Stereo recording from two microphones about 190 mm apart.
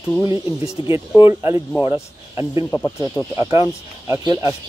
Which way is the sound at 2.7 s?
10° left (ahead or behind).